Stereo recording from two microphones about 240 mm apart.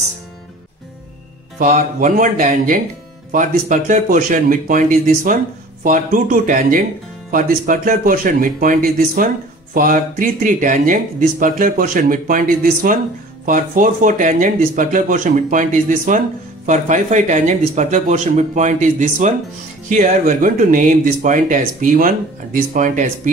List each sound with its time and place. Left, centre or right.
1.6 s speech: right